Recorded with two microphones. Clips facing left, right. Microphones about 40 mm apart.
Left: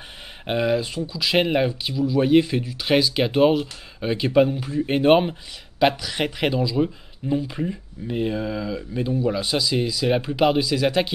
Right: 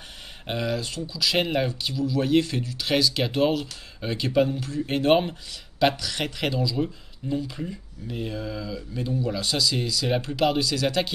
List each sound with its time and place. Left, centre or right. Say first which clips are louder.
0.5 s speech: left 6 dB; centre